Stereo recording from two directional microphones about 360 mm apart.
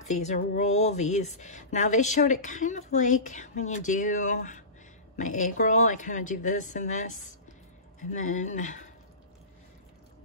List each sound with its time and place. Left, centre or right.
0.0 s speech: centre